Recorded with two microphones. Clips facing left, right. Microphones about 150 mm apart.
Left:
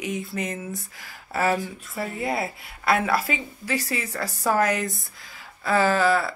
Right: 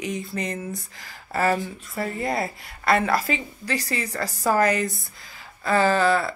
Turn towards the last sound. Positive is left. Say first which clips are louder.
# right 1 dB
turn(degrees=0)  # may be behind; listen again after turning